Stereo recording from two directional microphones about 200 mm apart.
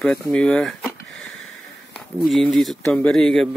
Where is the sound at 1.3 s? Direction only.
90° left.